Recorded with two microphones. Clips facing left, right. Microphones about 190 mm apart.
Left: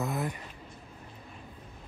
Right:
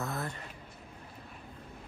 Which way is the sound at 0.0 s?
15° left (ahead or behind).